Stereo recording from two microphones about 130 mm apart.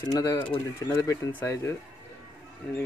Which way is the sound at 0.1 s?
25° left (ahead or behind).